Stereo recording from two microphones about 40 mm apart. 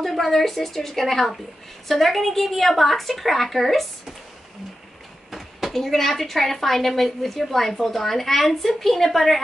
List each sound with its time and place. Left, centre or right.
0.0 s a woman's voice: centre
5.3 s speech: centre